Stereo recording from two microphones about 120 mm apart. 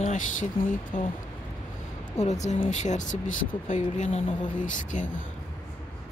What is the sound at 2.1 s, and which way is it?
Speech, 75° left (ahead or behind).